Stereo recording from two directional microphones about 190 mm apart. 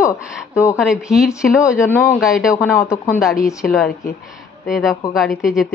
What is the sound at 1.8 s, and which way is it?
Speech, 10° left (ahead or behind).